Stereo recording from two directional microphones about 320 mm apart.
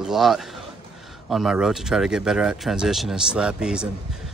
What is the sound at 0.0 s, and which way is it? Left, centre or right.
A man's voice, centre.